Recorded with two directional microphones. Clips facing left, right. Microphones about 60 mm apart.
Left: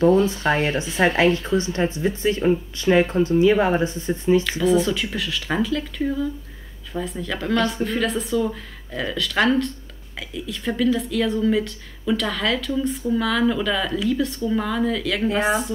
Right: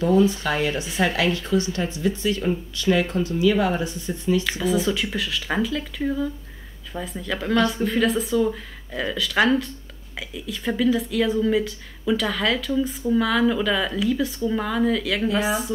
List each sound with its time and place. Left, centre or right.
0.3 s speech: left
4.5 s a woman's voice: centre